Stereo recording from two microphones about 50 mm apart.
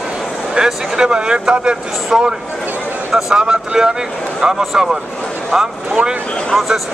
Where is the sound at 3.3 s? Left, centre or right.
Centre.